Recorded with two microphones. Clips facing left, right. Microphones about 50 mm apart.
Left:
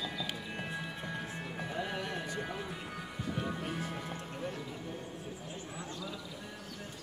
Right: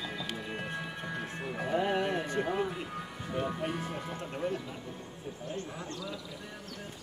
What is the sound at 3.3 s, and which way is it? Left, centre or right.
Music, centre.